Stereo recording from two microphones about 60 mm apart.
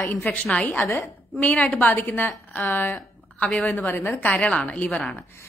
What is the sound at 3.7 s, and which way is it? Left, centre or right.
Speech, left.